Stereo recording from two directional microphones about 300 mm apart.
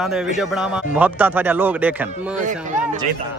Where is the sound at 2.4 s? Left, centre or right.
Right.